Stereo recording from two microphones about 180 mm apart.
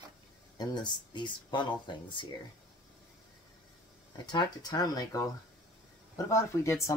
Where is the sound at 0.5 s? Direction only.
25° left (ahead or behind).